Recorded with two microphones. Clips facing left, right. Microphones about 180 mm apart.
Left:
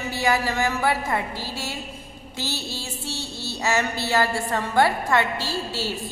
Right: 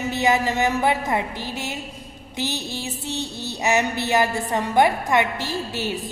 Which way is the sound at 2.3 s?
20° right (ahead or behind).